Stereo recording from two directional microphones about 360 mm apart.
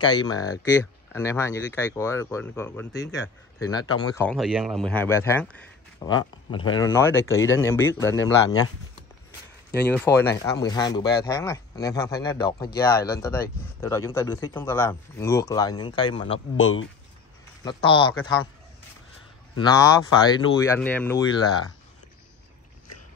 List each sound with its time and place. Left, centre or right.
0.0 s speech: centre
9.7 s speech: centre
16.5 s speech: left
17.6 s speech: centre
19.6 s speech: centre